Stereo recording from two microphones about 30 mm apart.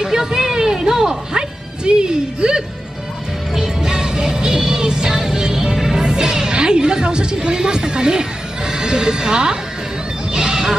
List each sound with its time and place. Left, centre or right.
0.0 s music: centre
1.9 s speech: right
3.5 s music: right
6.0 s speech: right
10.3 s fowl: right